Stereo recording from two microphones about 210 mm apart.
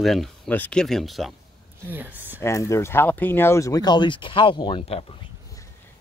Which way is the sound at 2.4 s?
15° left (ahead or behind).